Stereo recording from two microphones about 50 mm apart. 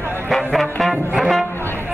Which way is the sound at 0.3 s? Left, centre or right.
Centre.